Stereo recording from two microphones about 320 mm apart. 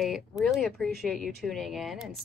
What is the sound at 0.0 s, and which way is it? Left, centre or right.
Speech, centre.